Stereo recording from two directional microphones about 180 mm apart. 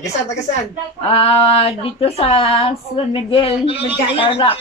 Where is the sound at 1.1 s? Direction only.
30° left (ahead or behind).